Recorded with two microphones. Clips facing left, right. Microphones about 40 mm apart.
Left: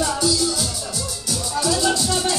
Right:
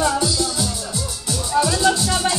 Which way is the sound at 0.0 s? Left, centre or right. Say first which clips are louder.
Right 1 dB; centre.